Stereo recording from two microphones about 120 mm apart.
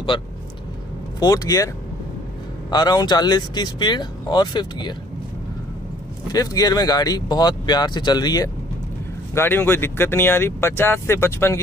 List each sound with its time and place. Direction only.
0.1 s speech: 40° left (ahead or behind)
1.2 s speech: 30° left (ahead or behind)
2.7 s speech: 35° left (ahead or behind)
6.3 s speech: 30° left (ahead or behind)
9.3 s speech: 20° left (ahead or behind)